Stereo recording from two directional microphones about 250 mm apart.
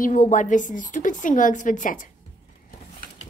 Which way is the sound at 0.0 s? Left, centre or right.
Left.